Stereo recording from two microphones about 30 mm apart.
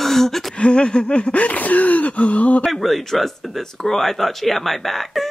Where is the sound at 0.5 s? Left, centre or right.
Left.